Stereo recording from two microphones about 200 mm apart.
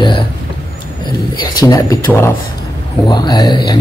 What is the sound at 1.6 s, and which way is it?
Speech, 15° left (ahead or behind).